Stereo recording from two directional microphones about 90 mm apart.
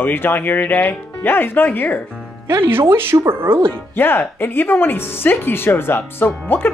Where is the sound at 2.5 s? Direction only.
25° right (ahead or behind).